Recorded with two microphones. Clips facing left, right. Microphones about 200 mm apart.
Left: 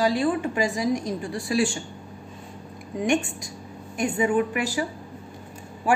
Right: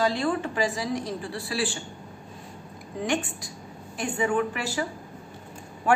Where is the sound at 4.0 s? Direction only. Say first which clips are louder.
Left 3 dB; 20° left (ahead or behind).